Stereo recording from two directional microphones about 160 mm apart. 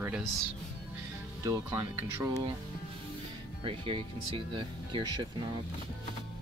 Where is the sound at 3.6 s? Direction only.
35° right (ahead or behind).